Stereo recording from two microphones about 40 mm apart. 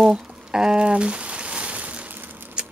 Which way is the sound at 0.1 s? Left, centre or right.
Right.